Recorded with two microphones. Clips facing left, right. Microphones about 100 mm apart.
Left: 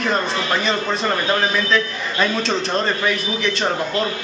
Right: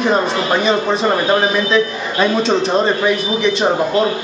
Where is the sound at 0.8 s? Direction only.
25° right (ahead or behind).